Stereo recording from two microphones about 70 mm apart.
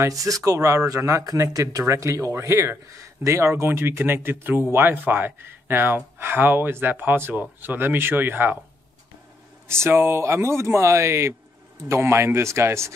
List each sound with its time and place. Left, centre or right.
0.1 s speech: right
0.5 s speech: right
9.7 s speech: right